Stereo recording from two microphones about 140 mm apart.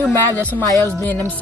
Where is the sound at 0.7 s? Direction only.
25° left (ahead or behind).